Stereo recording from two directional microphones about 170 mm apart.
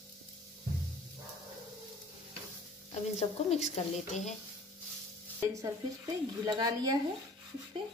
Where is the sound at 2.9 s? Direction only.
40° left (ahead or behind).